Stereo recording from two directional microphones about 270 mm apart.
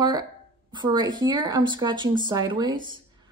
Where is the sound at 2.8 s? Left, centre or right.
Centre.